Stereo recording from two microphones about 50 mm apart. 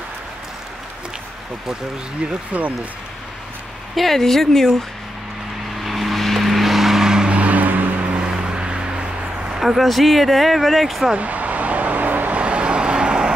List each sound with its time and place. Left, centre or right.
2.5 s speech: right
3.9 s speech: centre
5.9 s vehicle: centre; by 7.9 s right
8.0 s a sound: right
9.6 s speech: centre
11.1 s vehicle: right
12.4 s vehicle: right